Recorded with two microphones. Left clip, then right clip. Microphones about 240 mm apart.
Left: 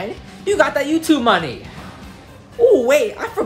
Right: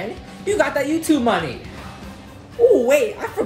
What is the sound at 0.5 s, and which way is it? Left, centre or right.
Speech, centre.